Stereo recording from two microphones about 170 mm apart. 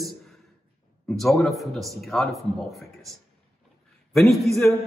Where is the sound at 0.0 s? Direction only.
Centre (ahead or behind).